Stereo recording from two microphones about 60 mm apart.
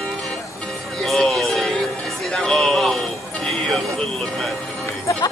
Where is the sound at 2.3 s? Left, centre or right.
Centre.